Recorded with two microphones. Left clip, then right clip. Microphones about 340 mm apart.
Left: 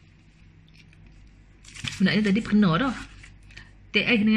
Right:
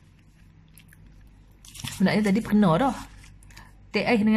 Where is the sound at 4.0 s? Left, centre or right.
Centre.